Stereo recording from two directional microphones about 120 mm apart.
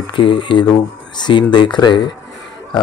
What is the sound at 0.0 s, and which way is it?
Speech, 45° left (ahead or behind).